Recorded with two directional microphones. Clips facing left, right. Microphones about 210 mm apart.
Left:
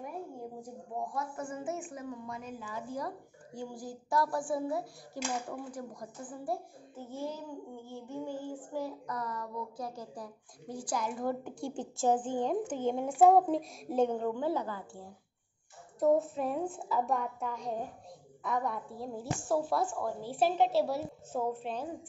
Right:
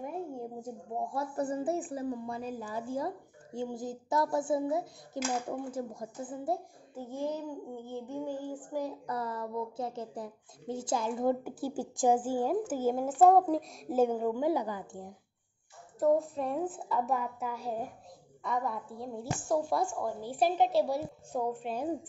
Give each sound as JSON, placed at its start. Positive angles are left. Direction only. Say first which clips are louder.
{"t": 1.1, "sound": "a woman's voice", "louder": "right 5 dB", "side_deg": -35}
{"t": 9.0, "sound": "a woman's voice", "louder": "right 3 dB", "side_deg": -30}
{"t": 11.4, "sound": "a woman's voice", "louder": "right 3 dB", "side_deg": -10}
{"t": 16.0, "sound": "a woman's voice", "louder": "even", "side_deg": 0}